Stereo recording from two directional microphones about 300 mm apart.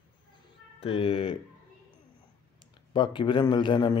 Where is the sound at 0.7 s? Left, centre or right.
Centre.